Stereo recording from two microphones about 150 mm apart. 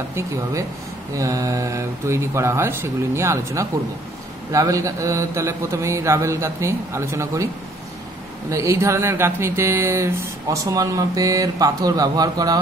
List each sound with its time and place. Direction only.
0.1 s speech: 20° right (ahead or behind)
8.5 s speech: 20° right (ahead or behind)